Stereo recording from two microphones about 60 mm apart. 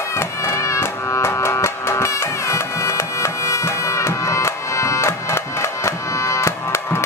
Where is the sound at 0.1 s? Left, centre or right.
Left.